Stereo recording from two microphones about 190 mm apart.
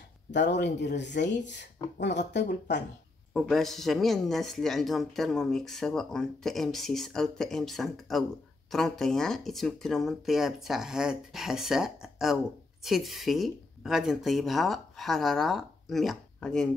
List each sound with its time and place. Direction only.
0.3 s speech: 65° left (ahead or behind)
3.3 s speech: centre (ahead or behind)